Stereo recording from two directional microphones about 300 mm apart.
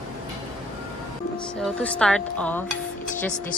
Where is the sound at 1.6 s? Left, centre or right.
Centre.